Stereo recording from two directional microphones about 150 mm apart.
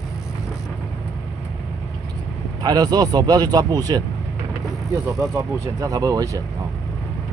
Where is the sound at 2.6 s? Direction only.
25° right (ahead or behind).